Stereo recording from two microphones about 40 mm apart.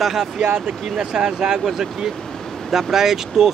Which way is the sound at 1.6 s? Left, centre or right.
Centre.